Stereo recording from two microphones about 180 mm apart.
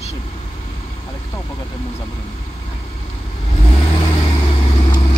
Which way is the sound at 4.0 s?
30° left (ahead or behind).